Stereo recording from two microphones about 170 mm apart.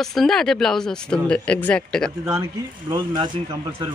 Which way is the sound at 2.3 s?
20° right (ahead or behind).